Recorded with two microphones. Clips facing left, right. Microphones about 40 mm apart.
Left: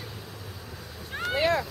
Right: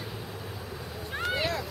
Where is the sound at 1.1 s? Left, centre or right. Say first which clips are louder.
Left 1 dB; centre.